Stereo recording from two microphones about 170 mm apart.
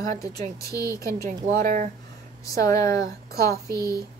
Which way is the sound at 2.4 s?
20° left (ahead or behind).